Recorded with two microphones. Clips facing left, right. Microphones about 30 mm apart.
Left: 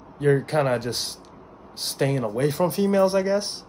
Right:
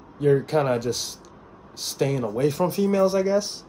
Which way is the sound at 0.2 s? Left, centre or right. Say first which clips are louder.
Right 1 dB; centre.